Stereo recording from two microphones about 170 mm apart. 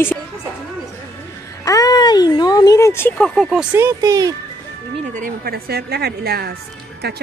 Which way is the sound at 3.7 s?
20° right (ahead or behind).